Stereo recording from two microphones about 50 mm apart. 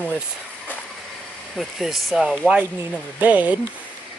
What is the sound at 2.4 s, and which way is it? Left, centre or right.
Speech, centre.